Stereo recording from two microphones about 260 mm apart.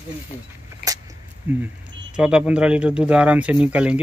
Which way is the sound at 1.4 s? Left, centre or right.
Centre.